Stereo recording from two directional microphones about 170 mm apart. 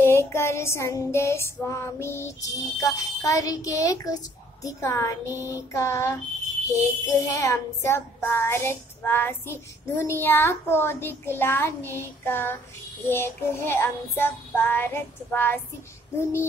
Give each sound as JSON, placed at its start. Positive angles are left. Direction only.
{"t": 0.0, "sound": "child singing", "side_deg": 15}
{"t": 5.2, "sound": "child singing", "side_deg": -15}
{"t": 5.5, "sound": "child singing", "side_deg": 15}